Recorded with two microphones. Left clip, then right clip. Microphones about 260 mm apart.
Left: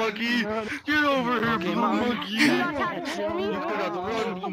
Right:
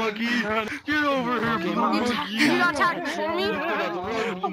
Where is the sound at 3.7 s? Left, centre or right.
Centre.